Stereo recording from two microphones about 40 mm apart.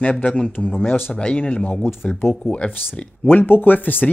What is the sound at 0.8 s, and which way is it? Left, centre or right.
Speech, left.